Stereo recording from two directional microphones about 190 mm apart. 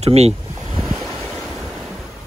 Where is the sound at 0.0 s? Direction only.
35° right (ahead or behind).